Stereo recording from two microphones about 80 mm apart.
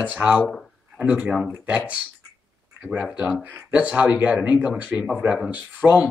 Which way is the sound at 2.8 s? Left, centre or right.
Centre.